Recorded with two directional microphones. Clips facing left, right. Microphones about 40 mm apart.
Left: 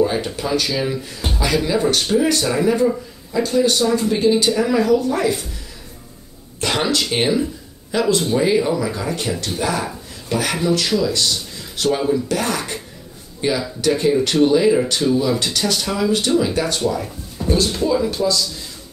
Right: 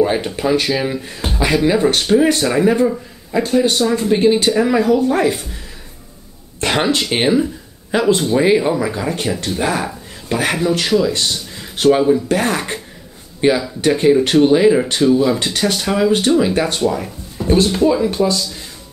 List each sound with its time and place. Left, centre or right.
0.0 s speech: right
6.6 s speech: right